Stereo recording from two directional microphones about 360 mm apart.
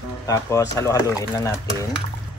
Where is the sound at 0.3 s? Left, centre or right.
Centre.